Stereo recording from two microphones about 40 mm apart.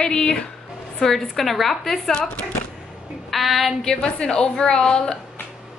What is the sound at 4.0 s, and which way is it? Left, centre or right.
A woman's voice, left.